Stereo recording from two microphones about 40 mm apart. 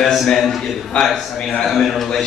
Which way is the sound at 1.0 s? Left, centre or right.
Centre.